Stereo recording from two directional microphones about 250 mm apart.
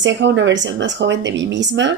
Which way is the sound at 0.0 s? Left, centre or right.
Right.